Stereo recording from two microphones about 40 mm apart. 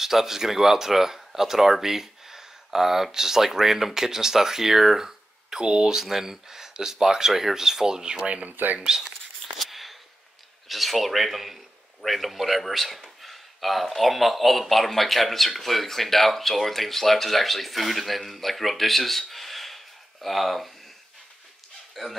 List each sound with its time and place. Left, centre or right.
0.0 s speech: centre
8.4 s speech: right
8.7 s speech: centre
9.0 s a sound: centre
10.7 s a man's voice: centre
22.0 s speech: centre